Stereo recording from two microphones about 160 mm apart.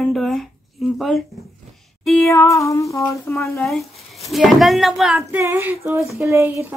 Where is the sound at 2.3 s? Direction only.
20° left (ahead or behind).